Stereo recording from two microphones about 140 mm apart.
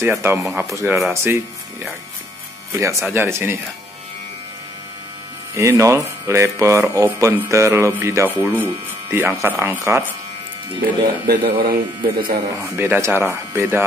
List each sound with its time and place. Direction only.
0.0 s speech: 15° right (ahead or behind)
0.8 s speech: 5° right (ahead or behind)
1.1 s speech: 15° right (ahead or behind)
5.5 s speech: 20° right (ahead or behind)
10.8 s a man's voice: 90° right
12.5 s speech: 15° right (ahead or behind)